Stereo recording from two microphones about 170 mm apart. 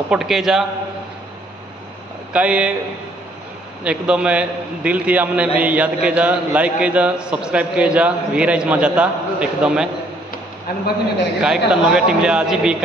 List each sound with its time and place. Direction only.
0.1 s a man's voice: centre (ahead or behind)
2.3 s a man's voice: 5° right (ahead or behind)
3.8 s a man's voice: 5° right (ahead or behind)
10.7 s a man's voice: 60° left (ahead or behind)
11.4 s a man's voice: 5° right (ahead or behind)